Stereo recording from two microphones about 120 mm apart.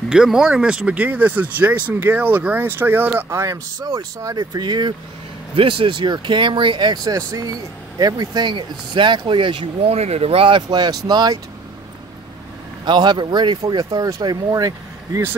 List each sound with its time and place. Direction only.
0.1 s speech: 5° right (ahead or behind); by 4.9 s 35° right (ahead or behind)
5.6 s speech: 50° right (ahead or behind)
10.7 s speech: 35° right (ahead or behind)
12.8 s speech: 40° right (ahead or behind)